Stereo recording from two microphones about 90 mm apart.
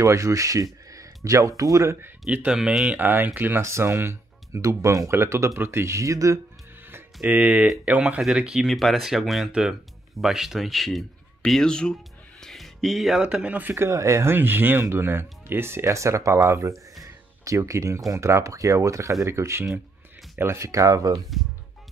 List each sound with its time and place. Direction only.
0.0 s speech: 35° right (ahead or behind)
2.2 s speech: 10° right (ahead or behind)
3.0 s speech: 20° right (ahead or behind)
7.2 s speech: 15° right (ahead or behind); by 11.9 s 10° left (ahead or behind)
12.4 s music: 5° left (ahead or behind)
13.2 s speech: 10° right (ahead or behind); by 21.2 s 40° right (ahead or behind)